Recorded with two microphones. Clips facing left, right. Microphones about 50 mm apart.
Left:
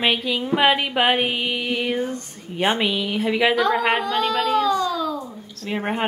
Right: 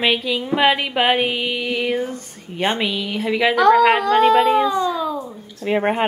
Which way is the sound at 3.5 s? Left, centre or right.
Right.